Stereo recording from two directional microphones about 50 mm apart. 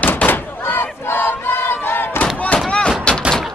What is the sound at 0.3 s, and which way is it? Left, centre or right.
Battle cry, left.